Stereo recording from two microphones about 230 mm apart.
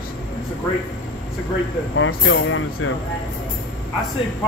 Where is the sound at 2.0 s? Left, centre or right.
Left.